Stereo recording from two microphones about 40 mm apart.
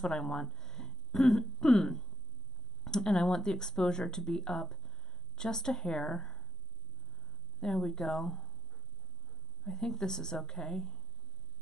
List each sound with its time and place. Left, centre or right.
0.1 s speech: centre
7.6 s speech: centre
9.7 s speech: centre